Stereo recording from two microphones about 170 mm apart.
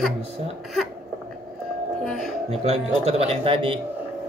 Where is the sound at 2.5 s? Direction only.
40° right (ahead or behind).